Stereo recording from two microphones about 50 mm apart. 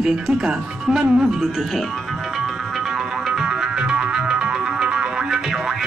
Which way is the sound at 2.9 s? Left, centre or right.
Centre.